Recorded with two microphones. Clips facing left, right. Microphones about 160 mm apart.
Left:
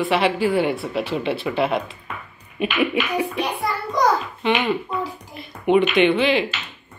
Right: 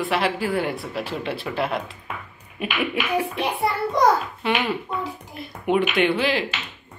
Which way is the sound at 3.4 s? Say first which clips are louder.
Right 1 dB; 25° right (ahead or behind).